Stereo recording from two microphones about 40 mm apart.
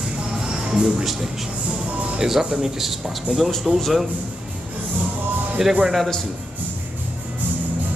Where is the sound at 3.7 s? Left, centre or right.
Centre.